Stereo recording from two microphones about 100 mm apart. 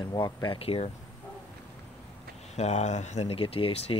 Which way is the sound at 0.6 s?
80° left.